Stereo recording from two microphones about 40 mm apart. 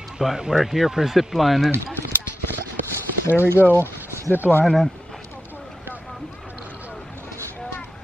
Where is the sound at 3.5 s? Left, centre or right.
Right.